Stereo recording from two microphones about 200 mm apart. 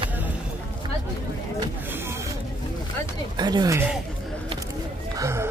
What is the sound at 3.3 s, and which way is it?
Speech, 20° right (ahead or behind).